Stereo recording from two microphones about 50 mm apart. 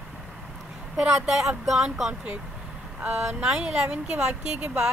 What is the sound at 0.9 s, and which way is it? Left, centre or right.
Speech, centre.